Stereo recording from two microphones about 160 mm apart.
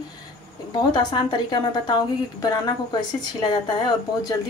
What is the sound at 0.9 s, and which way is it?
Speech, 25° left (ahead or behind).